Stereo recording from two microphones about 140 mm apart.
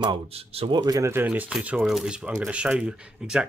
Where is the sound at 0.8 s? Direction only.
25° right (ahead or behind).